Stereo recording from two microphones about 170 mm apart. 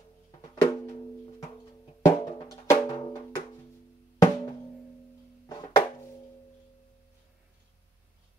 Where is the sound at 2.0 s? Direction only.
20° left (ahead or behind).